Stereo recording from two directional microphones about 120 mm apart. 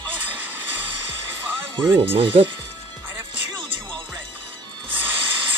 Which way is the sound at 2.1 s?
45° right (ahead or behind).